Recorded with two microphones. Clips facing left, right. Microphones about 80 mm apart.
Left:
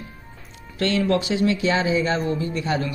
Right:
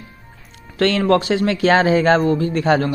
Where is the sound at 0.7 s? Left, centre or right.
Right.